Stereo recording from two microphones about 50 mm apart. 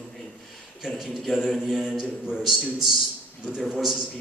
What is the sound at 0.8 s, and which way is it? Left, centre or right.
A man's voice, centre.